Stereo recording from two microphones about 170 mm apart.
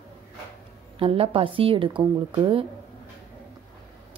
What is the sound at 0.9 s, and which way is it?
Speech, 35° right (ahead or behind).